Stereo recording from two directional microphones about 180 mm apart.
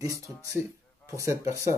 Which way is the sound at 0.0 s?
15° right (ahead or behind).